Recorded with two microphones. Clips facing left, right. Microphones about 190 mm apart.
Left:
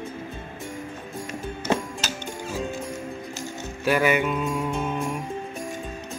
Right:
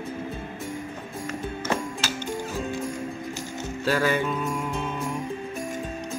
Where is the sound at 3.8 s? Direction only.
20° left (ahead or behind).